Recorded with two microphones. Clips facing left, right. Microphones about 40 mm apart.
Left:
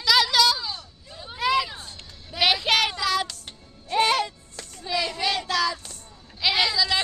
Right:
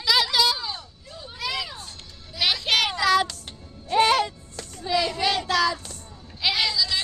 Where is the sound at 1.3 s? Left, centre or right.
Left.